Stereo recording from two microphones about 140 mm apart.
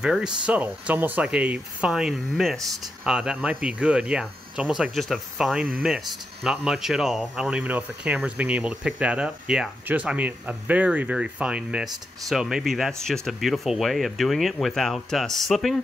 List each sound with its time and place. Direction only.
0.0 s speech: 5° right (ahead or behind)